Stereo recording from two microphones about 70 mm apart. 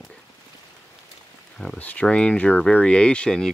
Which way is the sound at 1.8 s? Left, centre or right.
Left.